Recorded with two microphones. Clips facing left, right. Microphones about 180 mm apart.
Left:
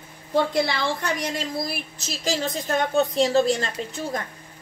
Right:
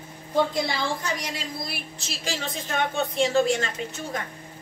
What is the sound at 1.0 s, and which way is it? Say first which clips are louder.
Speech: left 3 dB; 60° left (ahead or behind).